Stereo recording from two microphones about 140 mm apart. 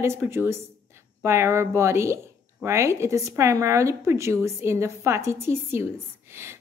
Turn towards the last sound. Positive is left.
turn(degrees=-15)  # may be behind; listen again after turning